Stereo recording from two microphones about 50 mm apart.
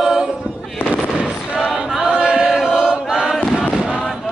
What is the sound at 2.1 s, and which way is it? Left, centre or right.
Chant, centre.